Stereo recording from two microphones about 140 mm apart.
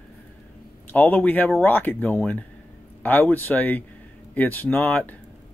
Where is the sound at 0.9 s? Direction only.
10° left (ahead or behind).